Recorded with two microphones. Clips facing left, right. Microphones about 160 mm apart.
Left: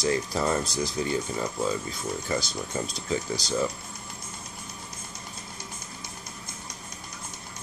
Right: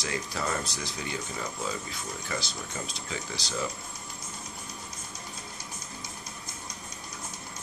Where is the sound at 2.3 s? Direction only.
35° left (ahead or behind).